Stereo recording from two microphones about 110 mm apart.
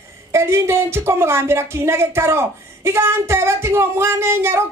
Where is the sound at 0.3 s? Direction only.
25° right (ahead or behind).